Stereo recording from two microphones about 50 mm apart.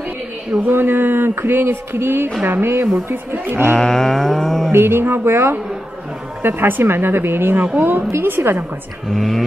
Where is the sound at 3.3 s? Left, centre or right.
Right.